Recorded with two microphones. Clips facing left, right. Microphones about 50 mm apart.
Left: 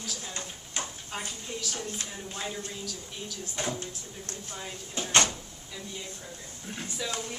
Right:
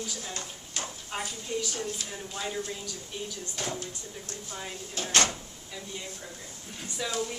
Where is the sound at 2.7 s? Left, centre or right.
Centre.